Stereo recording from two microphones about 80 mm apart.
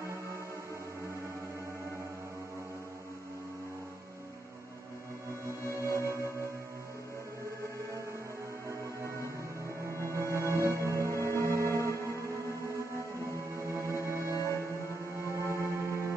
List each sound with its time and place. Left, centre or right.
5.7 s music: left
10.0 s music: right
13.6 s music: right